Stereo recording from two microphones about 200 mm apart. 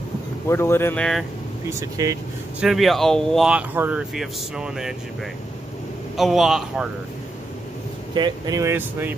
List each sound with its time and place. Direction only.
0.5 s speech: 15° left (ahead or behind)
1.7 s speech: 15° right (ahead or behind)
2.6 s speech: centre (ahead or behind)
6.1 s speech: centre (ahead or behind)
8.1 s speech: 20° right (ahead or behind)